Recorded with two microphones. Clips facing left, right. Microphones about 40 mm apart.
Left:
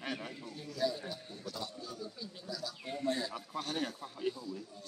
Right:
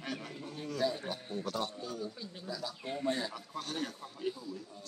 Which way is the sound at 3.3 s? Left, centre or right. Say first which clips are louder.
Left 2 dB; centre.